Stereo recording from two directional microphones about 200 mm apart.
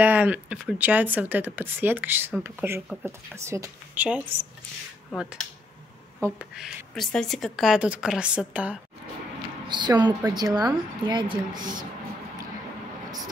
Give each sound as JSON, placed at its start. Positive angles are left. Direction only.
{"t": 0.0, "sound": "a woman's voice", "side_deg": -10}
{"t": 5.1, "sound": "a woman's voice", "side_deg": 0}
{"t": 6.5, "sound": "a woman's voice", "side_deg": 0}
{"t": 9.7, "sound": "a woman's voice", "side_deg": -20}